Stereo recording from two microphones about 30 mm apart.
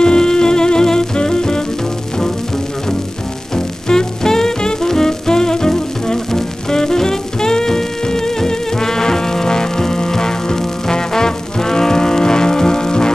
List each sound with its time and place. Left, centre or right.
0.0 s music: left
3.5 s music: left